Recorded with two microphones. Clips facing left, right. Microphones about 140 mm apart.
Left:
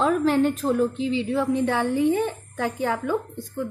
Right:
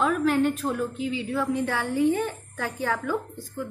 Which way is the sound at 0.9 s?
25° left (ahead or behind).